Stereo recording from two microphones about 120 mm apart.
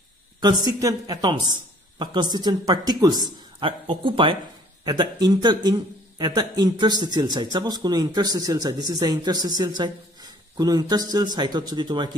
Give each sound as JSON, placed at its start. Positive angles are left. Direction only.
{"t": 0.4, "sound": "a man's voice", "side_deg": -35}